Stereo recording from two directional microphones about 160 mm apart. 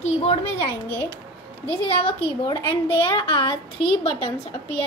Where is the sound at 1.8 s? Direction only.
35° left (ahead or behind).